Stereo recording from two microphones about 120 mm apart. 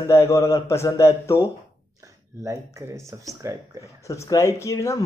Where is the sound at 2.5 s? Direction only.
25° right (ahead or behind).